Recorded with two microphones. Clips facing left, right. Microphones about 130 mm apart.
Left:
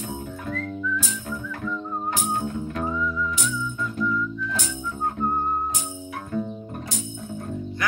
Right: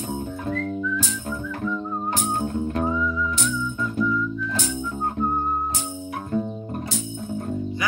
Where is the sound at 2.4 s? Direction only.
35° right (ahead or behind).